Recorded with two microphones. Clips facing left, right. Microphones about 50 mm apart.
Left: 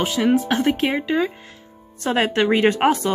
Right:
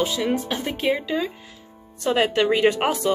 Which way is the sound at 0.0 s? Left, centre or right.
Left.